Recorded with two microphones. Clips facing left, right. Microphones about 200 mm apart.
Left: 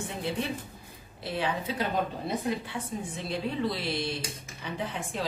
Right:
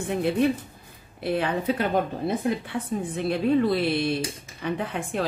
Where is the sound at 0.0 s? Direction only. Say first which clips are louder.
Right 10 dB; 55° right (ahead or behind).